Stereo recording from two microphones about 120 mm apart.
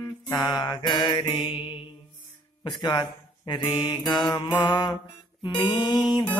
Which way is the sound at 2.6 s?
35° left (ahead or behind).